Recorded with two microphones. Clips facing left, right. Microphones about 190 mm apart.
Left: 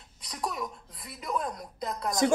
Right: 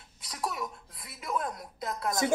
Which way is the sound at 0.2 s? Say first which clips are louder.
Left 1 dB; 5° right (ahead or behind).